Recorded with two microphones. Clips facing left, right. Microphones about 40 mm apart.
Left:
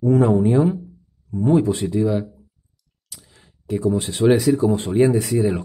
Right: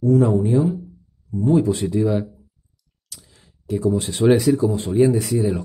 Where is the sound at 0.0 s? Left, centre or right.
Left.